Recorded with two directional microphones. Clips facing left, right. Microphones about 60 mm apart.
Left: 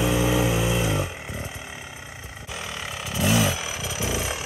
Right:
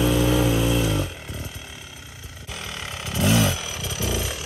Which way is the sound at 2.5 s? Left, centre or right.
Centre.